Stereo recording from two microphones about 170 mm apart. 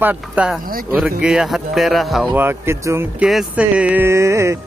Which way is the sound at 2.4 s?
15° right (ahead or behind).